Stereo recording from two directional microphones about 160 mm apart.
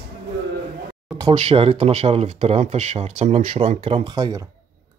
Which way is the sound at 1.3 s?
40° right (ahead or behind).